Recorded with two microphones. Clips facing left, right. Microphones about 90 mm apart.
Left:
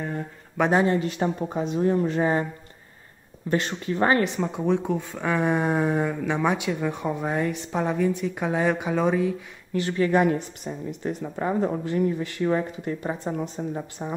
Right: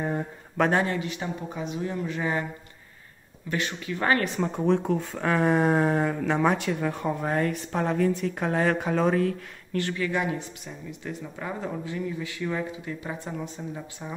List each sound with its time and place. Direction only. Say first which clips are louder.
0.6 s speech: left 2 dB; 15° left (ahead or behind)
0.8 s speech: left 6 dB; 40° left (ahead or behind)
3.4 s speech: left 5 dB; 35° left (ahead or behind)
4.4 s speech: even; 10° left (ahead or behind)
9.9 s speech: left 11 dB; 40° left (ahead or behind)